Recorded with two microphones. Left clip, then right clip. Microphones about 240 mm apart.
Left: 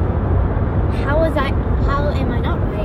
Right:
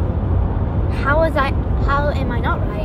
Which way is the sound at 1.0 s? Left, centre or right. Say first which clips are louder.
Right 2 dB; right.